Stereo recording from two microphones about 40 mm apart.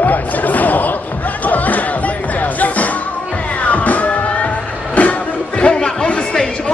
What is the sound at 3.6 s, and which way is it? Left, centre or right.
Music, left.